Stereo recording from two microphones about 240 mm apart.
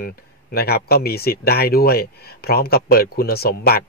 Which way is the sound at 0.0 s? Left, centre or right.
Left.